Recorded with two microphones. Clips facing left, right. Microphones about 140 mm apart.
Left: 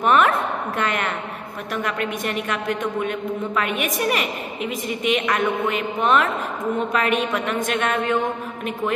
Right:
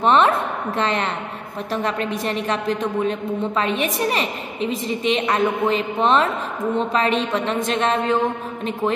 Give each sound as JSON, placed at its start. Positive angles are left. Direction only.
{"t": 0.0, "sound": "a woman's voice", "side_deg": -30}